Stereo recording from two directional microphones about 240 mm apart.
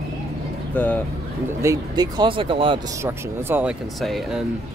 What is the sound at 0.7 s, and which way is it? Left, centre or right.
Speech, centre.